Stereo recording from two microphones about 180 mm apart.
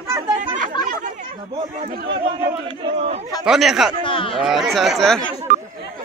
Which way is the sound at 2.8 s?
35° right (ahead or behind).